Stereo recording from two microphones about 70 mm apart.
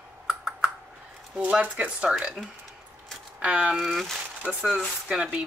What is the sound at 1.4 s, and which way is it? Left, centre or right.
Speech, centre.